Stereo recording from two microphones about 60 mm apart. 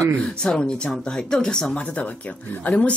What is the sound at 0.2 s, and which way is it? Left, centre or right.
Speech, centre.